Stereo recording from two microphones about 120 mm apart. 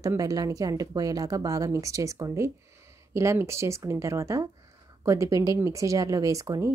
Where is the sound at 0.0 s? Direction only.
30° right (ahead or behind).